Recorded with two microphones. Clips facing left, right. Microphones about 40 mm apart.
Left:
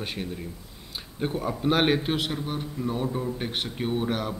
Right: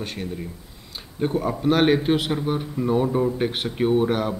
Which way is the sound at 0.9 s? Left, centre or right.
Centre.